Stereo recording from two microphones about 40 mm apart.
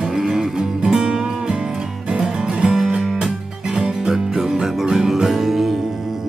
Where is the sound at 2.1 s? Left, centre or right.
Right.